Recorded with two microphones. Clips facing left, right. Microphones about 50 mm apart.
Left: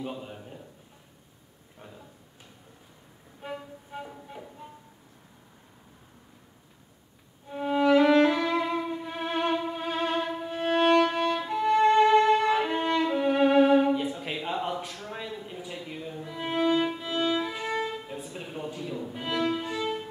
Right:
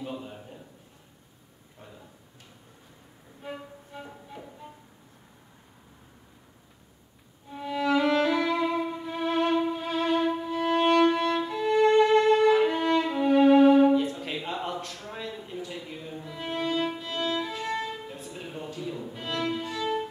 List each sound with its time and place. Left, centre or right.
0.0 s a sound: centre
4.0 s music: centre
7.5 s music: left; by 9.0 s centre
9.1 s violin: centre
10.2 s violin: centre
10.5 s violin: left
10.8 s violin: centre; by 12.1 s left
12.4 s violin: centre
13.9 s a sound: centre